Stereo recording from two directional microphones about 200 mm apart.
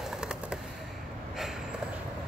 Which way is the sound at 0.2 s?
5° right (ahead or behind).